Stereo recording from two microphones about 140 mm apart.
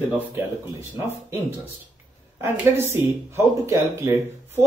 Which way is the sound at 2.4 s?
20° right (ahead or behind).